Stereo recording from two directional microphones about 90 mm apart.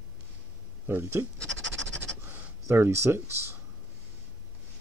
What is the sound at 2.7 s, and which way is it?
Speech, 30° right (ahead or behind).